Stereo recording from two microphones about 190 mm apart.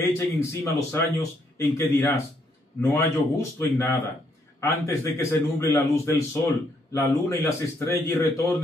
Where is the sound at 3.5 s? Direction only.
10° left (ahead or behind).